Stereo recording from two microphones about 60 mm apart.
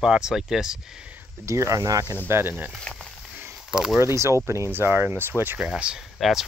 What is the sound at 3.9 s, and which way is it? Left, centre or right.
Speech, right.